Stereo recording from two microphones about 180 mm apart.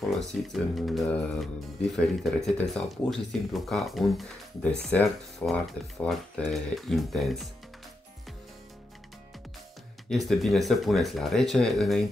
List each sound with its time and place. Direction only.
0.1 s speech: centre (ahead or behind)
10.0 s speech: centre (ahead or behind)